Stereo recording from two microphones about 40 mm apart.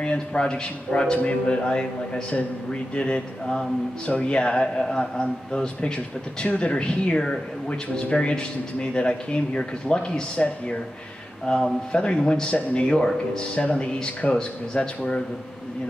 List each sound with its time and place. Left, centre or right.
0.0 s speech: left
10.3 s speech: left
11.4 s speech: centre